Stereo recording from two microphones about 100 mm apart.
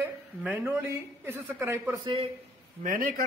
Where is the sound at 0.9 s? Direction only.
20° right (ahead or behind).